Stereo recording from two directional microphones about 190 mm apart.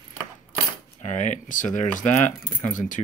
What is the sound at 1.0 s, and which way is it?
Speech, 40° left (ahead or behind).